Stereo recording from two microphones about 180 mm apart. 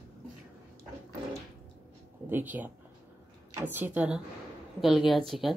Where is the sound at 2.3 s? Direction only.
10° right (ahead or behind).